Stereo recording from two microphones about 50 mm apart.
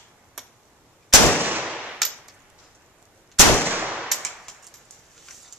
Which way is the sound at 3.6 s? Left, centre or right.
Right.